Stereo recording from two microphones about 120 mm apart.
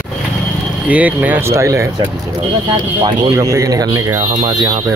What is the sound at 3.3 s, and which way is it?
Speech, 30° right (ahead or behind).